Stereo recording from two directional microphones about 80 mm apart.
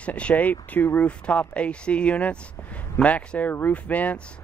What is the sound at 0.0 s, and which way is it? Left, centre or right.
Speech, centre.